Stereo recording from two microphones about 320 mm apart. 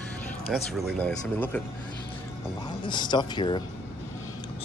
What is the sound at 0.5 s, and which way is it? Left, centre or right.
Speech, centre.